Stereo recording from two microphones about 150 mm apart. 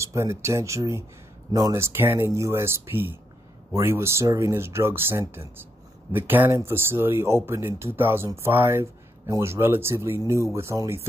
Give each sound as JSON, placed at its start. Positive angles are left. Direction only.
{"t": 0.0, "sound": "speech", "side_deg": -20}